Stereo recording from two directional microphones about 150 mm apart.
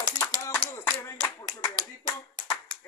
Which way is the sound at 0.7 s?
20° left (ahead or behind).